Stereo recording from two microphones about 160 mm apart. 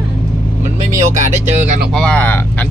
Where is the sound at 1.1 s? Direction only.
50° right (ahead or behind).